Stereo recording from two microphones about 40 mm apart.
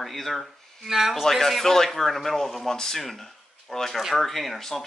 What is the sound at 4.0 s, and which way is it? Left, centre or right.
Speech, centre.